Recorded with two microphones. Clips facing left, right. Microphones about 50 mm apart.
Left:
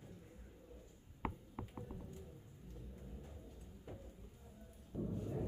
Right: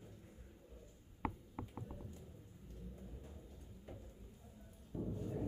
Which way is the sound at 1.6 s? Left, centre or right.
Centre.